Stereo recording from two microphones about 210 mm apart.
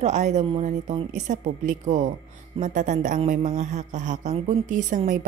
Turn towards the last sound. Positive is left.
turn(degrees=-35)  # may be behind; listen again after turning